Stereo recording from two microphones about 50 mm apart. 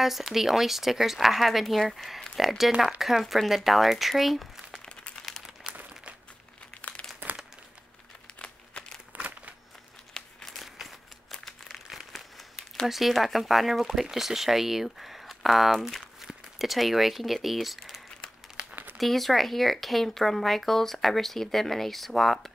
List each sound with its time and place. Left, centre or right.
0.0 s speech: centre
5.2 s crumpling: centre
5.8 s a sound: right
6.8 s crumpling: left
9.1 s crumpling: right
10.1 s crumpling: centre
10.8 s a sound: centre
12.1 s crumpling: centre
12.8 s speech: centre